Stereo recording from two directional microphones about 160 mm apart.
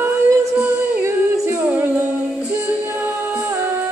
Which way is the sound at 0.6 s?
15° right (ahead or behind).